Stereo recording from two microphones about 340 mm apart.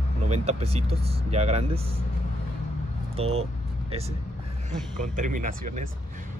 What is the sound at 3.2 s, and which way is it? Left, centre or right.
Speech, centre.